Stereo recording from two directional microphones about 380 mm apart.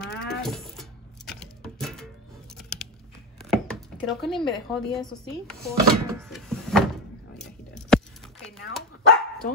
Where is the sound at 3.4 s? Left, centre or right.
Centre.